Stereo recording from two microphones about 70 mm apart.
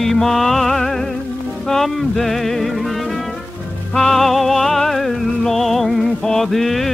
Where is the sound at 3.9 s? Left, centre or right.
Centre.